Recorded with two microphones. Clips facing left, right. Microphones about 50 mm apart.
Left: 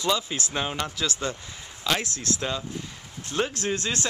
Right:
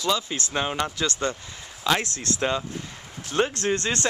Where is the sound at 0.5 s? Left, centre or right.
Centre.